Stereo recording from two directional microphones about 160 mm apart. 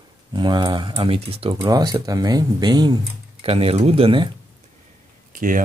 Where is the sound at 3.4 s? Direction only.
40° right (ahead or behind).